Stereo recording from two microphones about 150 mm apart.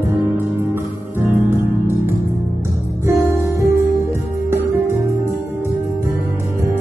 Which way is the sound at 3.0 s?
20° right (ahead or behind).